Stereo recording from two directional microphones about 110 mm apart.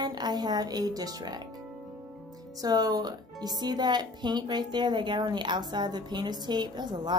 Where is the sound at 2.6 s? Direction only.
35° right (ahead or behind).